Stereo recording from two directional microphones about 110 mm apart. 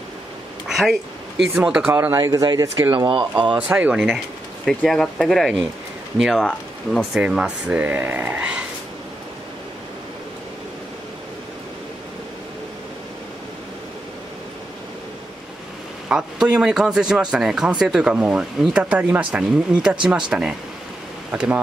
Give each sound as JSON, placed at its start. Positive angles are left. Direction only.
{"t": 0.7, "sound": "a sound", "side_deg": -5}
{"t": 1.5, "sound": "speech", "side_deg": -5}
{"t": 1.9, "sound": "speech", "side_deg": -20}
{"t": 2.1, "sound": "speech", "side_deg": -35}
{"t": 2.9, "sound": "speech", "side_deg": -45}
{"t": 3.5, "sound": "speech", "side_deg": -10}
{"t": 7.2, "sound": "speech", "side_deg": -10}
{"t": 16.1, "sound": "speech", "side_deg": -10}